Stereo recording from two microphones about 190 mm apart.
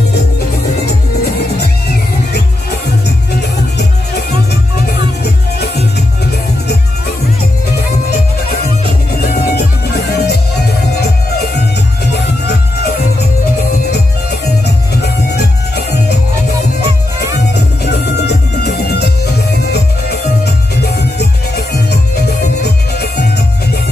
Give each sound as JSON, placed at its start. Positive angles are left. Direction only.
{"t": 4.3, "sound": "music", "side_deg": 55}
{"t": 9.2, "sound": "music", "side_deg": 60}
{"t": 17.2, "sound": "music", "side_deg": 60}